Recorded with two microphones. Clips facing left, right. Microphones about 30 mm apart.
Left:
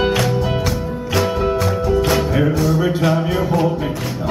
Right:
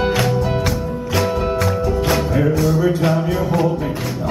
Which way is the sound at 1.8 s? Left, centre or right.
Centre.